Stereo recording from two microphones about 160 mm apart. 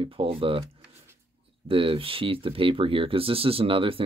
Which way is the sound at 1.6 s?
35° right (ahead or behind).